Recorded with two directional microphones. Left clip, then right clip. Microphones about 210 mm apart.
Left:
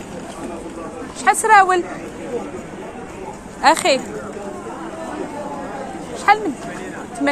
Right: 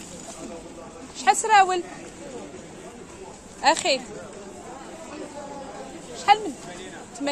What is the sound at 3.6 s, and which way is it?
Speech, 15° right (ahead or behind).